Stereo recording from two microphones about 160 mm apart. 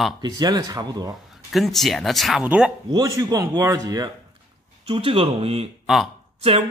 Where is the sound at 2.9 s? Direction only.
20° right (ahead or behind).